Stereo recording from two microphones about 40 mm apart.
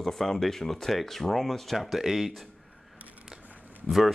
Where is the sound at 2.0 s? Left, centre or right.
Centre.